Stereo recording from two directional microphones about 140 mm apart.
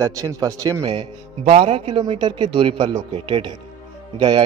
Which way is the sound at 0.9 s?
50° right (ahead or behind).